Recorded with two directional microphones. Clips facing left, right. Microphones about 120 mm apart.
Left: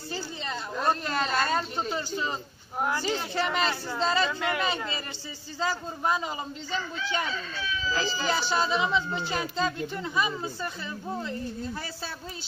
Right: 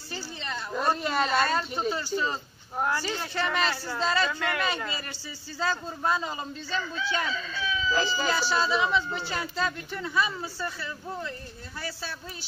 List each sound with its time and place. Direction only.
0.7 s a woman's voice: 5° right (ahead or behind)
1.9 s a man's voice: 20° left (ahead or behind)
8.3 s speech: 20° left (ahead or behind)